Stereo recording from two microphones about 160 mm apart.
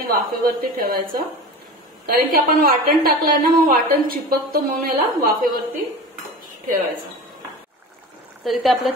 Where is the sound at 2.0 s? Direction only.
65° right (ahead or behind).